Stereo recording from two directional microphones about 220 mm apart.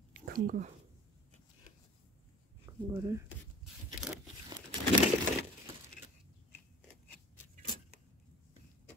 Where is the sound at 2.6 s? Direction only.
15° right (ahead or behind).